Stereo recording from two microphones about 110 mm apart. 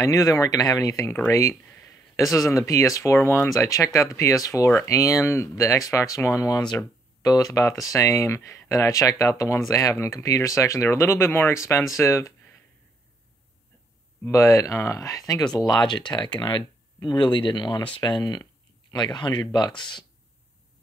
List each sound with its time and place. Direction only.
0.0 s speech: 30° left (ahead or behind)
14.2 s speech: 30° left (ahead or behind); by 20.1 s 45° left (ahead or behind)